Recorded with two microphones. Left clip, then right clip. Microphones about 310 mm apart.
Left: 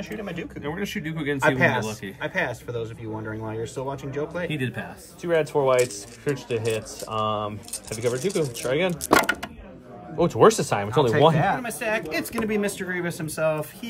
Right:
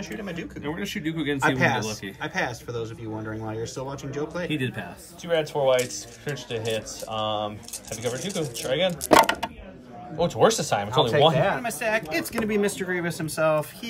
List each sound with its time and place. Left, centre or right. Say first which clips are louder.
0.0 s speech: left 1 dB; centre
5.2 s speech: left 1 dB; left
7.2 s speech: left 1 dB; left
9.1 s speech: right 3 dB; centre
10.1 s speech: left 3 dB; left
11.3 s speech: even; centre